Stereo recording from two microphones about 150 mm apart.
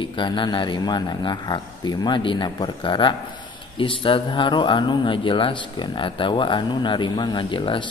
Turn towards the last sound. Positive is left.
turn(degrees=35)  # may be behind; listen again after turning